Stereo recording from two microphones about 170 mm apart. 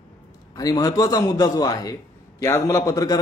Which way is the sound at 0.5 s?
20° left (ahead or behind).